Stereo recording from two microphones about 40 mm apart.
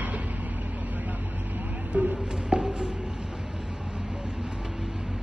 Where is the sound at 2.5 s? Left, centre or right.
Centre.